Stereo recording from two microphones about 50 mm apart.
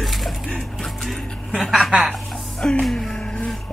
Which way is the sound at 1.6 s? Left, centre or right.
Centre.